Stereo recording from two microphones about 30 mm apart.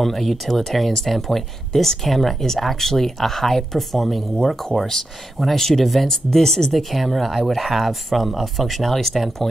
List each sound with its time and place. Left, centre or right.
0.0 s speech: centre
7.0 s speech: centre